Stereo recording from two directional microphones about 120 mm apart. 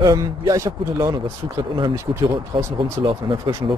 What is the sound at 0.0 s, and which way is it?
Speech, 30° right (ahead or behind).